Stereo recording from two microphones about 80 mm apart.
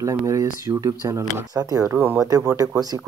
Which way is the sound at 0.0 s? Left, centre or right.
Right.